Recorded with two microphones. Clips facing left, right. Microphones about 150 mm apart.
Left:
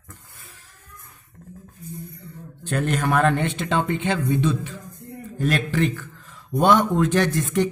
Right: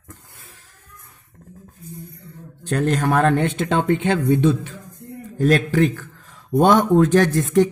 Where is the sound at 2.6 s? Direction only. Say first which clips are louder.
Right 3 dB; 40° right (ahead or behind).